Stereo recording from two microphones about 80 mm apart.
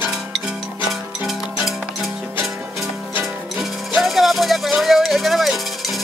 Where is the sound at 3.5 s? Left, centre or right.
Centre.